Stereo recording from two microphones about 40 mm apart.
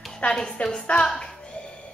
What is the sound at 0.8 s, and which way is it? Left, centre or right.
Speech, left.